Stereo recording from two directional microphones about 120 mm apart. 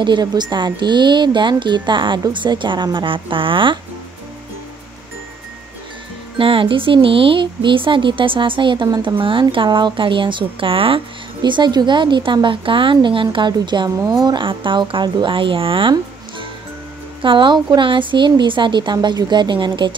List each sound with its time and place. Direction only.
0.0 s speech: 35° right (ahead or behind)
6.3 s speech: 45° right (ahead or behind)